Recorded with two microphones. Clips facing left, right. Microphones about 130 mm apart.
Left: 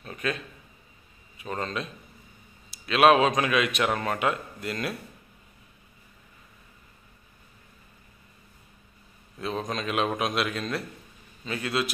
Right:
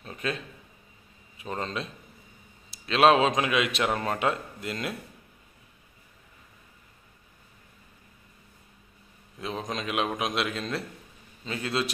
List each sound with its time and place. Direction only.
0.0 s a sound: 25° right (ahead or behind)
1.4 s a man's voice: 25° right (ahead or behind)
2.9 s a man's voice: 30° right (ahead or behind)
9.4 s a man's voice: 20° right (ahead or behind)